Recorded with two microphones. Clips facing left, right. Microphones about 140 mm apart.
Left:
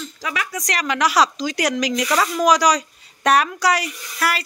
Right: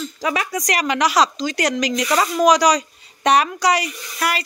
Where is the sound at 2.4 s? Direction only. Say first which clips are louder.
Right 2 dB; 5° left (ahead or behind).